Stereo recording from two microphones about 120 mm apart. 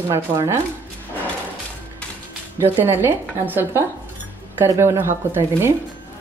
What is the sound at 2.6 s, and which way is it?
Speech, 20° right (ahead or behind).